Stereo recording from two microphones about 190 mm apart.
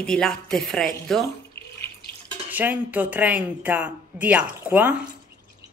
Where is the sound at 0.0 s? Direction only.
5° left (ahead or behind).